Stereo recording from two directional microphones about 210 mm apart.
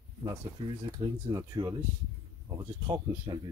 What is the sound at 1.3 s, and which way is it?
Speech, 20° right (ahead or behind).